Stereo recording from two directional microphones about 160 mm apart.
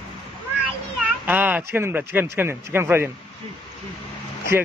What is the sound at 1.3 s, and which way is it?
A man's voice, 10° right (ahead or behind).